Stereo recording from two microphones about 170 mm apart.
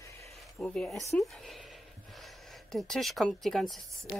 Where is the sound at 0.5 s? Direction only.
5° left (ahead or behind).